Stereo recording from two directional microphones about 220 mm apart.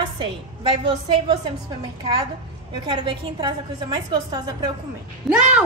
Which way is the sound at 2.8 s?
20° right (ahead or behind).